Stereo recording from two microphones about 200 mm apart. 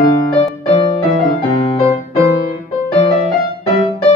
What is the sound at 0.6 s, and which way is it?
Music, 30° left (ahead or behind).